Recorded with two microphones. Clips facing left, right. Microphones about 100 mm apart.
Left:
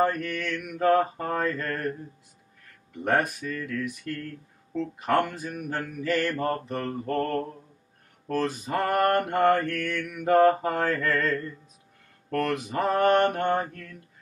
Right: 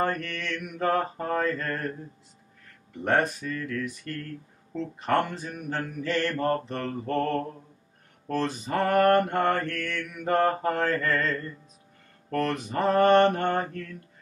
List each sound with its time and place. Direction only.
0.0 s mantra: 5° left (ahead or behind)
3.0 s mantra: 5° left (ahead or behind)